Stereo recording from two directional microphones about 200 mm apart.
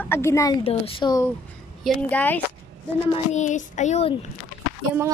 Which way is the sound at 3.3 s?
35° left (ahead or behind).